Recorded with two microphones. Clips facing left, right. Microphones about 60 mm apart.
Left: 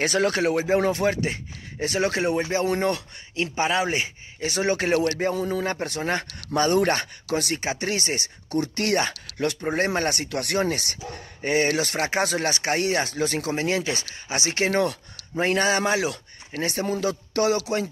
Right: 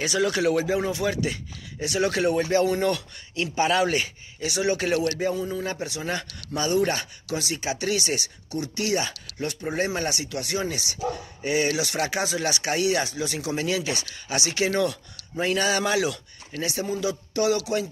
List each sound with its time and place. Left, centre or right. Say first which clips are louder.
0.0 s speech: left 1 dB; left
0.7 s a man's voice: left 4 dB; left
1.0 s a man's voice: left 2 dB; left
2.6 s a man's voice: even; left
4.4 s speech: left 1 dB; left
5.3 s a man's voice: left 3 dB; left
7.6 s speech: even; left
8.5 s a man's voice: left 3 dB; left
13.5 s a man's voice: left 2 dB; left
17.5 s speech: right 1 dB; left